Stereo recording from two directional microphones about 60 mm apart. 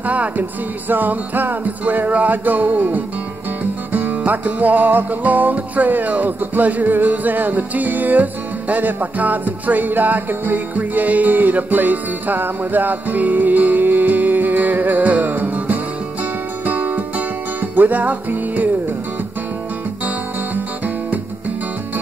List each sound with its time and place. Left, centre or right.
0.0 s music: right
20.5 s music: right